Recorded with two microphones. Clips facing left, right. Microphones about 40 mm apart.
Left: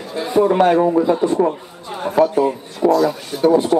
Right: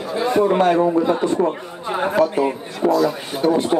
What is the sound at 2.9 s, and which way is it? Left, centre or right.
Speech, centre.